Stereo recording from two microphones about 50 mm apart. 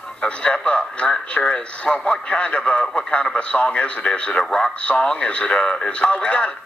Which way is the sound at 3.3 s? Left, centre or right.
Left.